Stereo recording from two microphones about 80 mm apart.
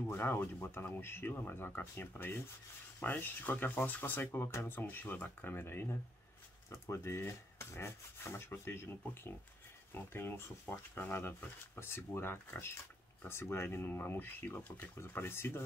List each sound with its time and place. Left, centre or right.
0.1 s speech: left
6.7 s rub: left
9.9 s speech: left
15.0 s rub: left